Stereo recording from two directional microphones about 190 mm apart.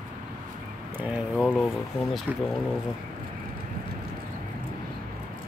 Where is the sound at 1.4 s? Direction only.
5° left (ahead or behind).